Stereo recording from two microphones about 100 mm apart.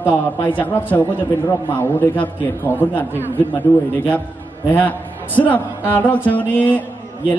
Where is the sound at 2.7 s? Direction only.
20° left (ahead or behind).